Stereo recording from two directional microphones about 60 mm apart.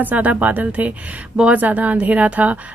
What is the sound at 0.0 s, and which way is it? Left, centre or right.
Speech, right.